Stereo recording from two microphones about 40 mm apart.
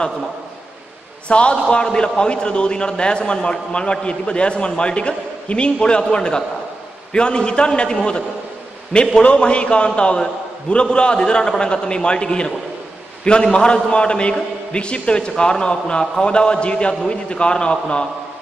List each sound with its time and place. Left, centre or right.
1.3 s a man's voice: left